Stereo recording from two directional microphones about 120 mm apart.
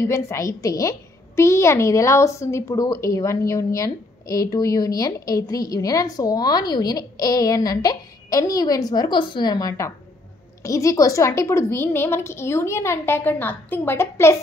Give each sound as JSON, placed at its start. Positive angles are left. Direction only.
{"t": 0.0, "sound": "a woman's voice", "side_deg": 25}